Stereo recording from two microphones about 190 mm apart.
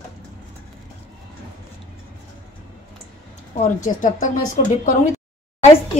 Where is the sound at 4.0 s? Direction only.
45° left (ahead or behind).